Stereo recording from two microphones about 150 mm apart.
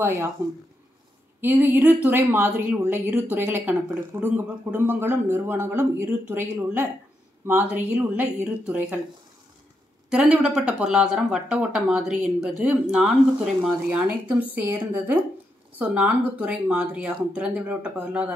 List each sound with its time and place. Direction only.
0.0 s speech: 15° right (ahead or behind)
1.4 s speech: 15° right (ahead or behind)
10.0 s speech: 5° right (ahead or behind)